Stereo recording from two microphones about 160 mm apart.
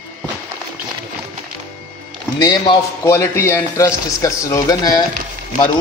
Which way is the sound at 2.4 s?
25° left (ahead or behind).